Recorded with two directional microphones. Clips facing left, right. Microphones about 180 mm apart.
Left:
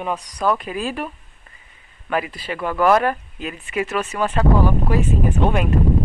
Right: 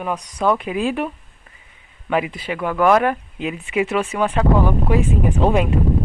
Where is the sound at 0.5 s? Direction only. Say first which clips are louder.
Right 4 dB; 15° right (ahead or behind).